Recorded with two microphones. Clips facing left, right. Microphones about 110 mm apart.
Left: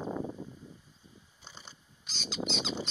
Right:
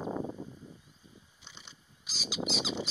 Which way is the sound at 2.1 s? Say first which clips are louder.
Even; 5° right (ahead or behind).